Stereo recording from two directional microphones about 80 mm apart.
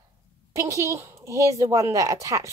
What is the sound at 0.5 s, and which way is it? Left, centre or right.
Speech, right.